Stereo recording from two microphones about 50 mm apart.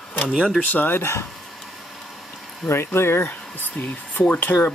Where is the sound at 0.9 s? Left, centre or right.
Left.